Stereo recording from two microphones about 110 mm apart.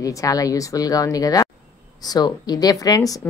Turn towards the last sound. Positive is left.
turn(degrees=35)  # may be behind; listen again after turning